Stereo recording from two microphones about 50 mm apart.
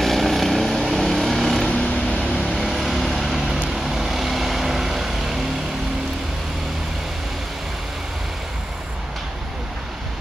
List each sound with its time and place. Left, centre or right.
0.0 s vehicle: centre
1.7 s vehicle: centre
2.4 s vehicle: centre